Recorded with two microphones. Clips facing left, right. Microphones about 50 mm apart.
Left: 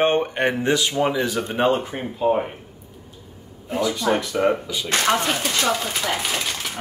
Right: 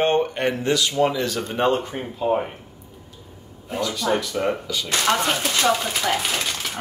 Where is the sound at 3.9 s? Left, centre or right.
Left.